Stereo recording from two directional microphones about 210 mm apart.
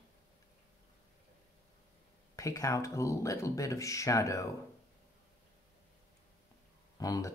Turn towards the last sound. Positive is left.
turn(degrees=15)  # may be behind; listen again after turning